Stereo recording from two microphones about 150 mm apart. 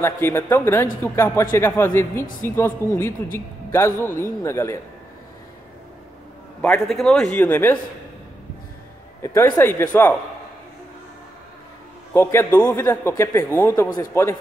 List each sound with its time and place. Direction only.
0.0 s a man's voice: 15° left (ahead or behind)
6.6 s a man's voice: 5° left (ahead or behind)
7.3 s a man's voice: 15° left (ahead or behind)
9.2 s a man's voice: 20° left (ahead or behind)
12.1 s a man's voice: 15° left (ahead or behind)